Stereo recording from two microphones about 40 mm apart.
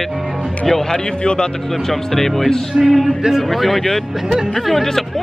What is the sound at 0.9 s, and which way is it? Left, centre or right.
Speech, left.